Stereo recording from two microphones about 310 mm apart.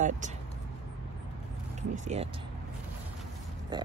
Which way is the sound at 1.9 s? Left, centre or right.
Right.